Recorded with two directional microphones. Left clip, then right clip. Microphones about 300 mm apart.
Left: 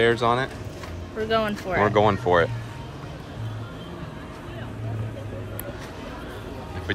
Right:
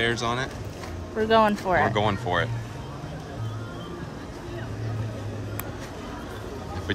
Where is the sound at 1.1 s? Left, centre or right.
Right.